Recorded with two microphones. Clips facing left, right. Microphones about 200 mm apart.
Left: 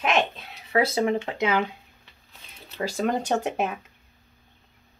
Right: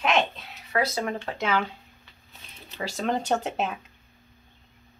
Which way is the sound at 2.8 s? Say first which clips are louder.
Left 2 dB; 10° left (ahead or behind).